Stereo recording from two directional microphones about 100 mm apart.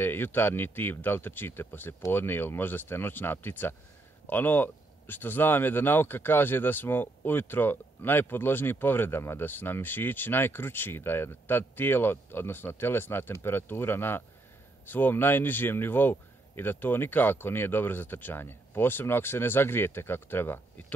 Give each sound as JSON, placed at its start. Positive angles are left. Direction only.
{"t": 0.0, "sound": "speech", "side_deg": 20}